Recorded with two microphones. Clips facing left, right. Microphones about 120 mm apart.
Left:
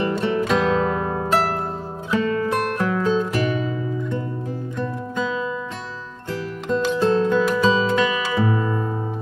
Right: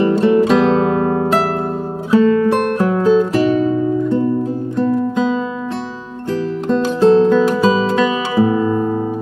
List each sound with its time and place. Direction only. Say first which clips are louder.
0.0 s music: right 9 dB; 35° right (ahead or behind)
1.0 s harp: right 9 dB; 10° right (ahead or behind)
2.0 s music: right 9 dB; 35° right (ahead or behind)
6.7 s music: right 7 dB; 35° right (ahead or behind)
8.5 s music: right 8 dB; 15° right (ahead or behind)